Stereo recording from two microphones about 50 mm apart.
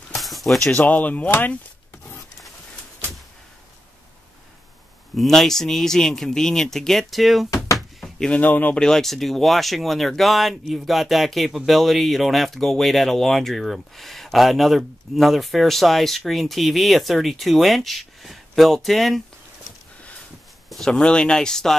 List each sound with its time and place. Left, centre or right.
0.1 s music: centre
0.8 s speech: left
5.1 s speech: centre
7.5 s cupboard open or close: left
8.4 s speech: left
8.7 s speech: centre
20.7 s speech: centre
21.0 s speech: centre